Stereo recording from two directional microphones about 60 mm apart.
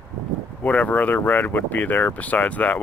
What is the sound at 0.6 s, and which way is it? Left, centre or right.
Speech, left.